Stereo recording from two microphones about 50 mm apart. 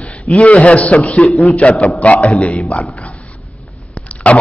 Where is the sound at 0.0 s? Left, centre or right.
Left.